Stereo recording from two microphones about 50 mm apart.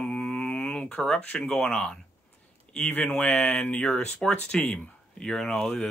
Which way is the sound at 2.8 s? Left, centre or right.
Left.